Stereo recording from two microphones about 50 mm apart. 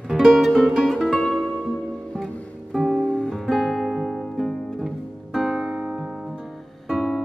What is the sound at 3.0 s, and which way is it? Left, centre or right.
Music, left.